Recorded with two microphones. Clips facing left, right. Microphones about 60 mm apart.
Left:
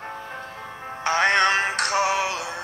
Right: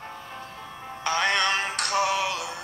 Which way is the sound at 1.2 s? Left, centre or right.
Left.